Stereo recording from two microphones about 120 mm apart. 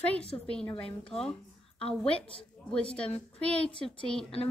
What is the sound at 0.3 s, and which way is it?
Speech, 35° left (ahead or behind).